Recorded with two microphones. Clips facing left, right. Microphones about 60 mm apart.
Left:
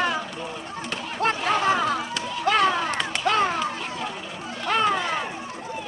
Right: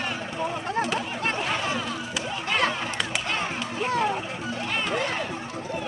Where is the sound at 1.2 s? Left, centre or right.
Left.